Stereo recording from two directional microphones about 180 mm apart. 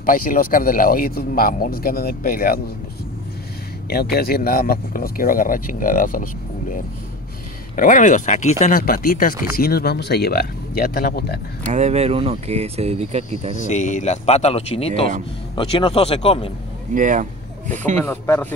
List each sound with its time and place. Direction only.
0.0 s speech: 50° left (ahead or behind)
3.9 s speech: 60° left (ahead or behind)
7.7 s speech: 45° left (ahead or behind)
11.6 s speech: 40° right (ahead or behind)
13.7 s speech: 45° left (ahead or behind)
16.9 s speech: 45° right (ahead or behind)
18.0 s speech: 15° left (ahead or behind)